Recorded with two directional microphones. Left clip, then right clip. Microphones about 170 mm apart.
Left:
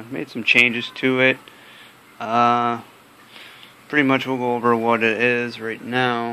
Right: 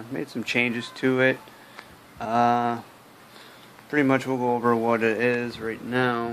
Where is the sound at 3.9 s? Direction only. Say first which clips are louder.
Left 4 dB; 5° left (ahead or behind).